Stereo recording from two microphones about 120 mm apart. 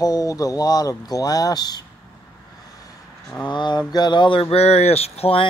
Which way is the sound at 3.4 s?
40° left (ahead or behind).